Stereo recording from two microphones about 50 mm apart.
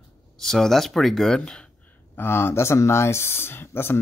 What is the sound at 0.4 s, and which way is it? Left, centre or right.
Speech, centre.